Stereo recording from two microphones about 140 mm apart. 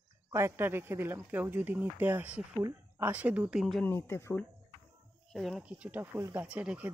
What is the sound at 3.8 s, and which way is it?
Speech, 15° left (ahead or behind).